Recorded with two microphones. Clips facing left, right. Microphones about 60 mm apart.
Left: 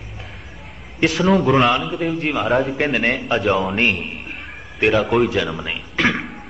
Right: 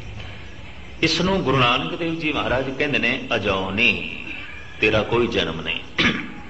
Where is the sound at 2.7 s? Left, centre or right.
Centre.